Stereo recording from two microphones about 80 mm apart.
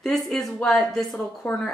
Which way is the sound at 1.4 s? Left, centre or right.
Left.